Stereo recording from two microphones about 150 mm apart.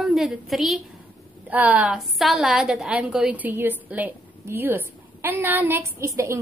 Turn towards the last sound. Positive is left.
turn(degrees=-20)  # may be behind; listen again after turning